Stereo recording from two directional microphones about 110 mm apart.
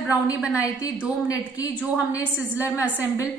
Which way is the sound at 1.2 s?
30° left (ahead or behind).